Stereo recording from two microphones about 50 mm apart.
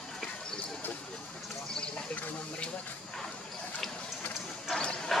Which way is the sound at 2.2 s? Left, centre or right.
Left.